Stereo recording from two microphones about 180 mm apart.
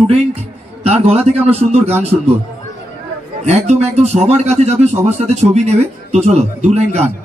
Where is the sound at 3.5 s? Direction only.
35° right (ahead or behind).